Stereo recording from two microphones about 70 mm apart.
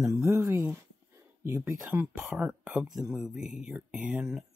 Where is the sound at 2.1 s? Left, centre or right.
Centre.